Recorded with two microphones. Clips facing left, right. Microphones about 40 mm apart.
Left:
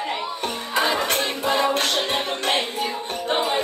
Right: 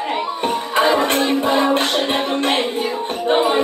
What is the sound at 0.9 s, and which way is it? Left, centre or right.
A woman's voice, centre.